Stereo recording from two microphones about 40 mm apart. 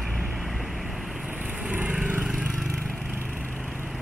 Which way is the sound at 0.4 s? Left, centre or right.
Centre.